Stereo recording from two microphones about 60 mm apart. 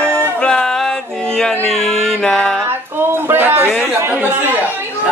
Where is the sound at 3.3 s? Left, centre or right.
Right.